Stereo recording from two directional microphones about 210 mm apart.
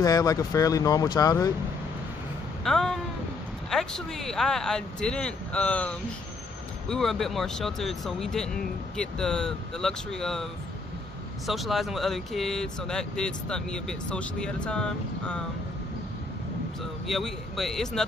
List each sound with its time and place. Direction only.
0.0 s speech: 15° left (ahead or behind)
2.6 s a sound: centre (ahead or behind)
3.7 s speech: centre (ahead or behind)
17.1 s speech: centre (ahead or behind)